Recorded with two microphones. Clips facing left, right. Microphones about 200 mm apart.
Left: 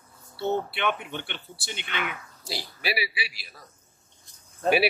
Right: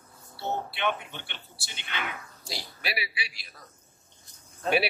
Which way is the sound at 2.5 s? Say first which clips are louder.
Left 5 dB; 5° left (ahead or behind).